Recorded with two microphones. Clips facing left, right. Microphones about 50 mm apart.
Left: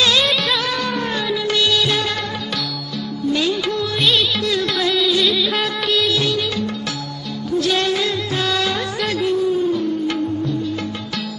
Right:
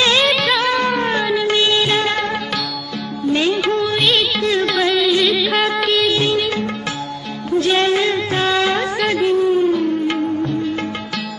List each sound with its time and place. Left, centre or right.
0.2 s music of bollywood: centre
0.6 s music: right
1.4 s music of bollywood: right
3.3 s music of bollywood: right
4.4 s music: right
5.2 s music: centre
6.0 s music: right
7.5 s music of bollywood: right
10.0 s music: right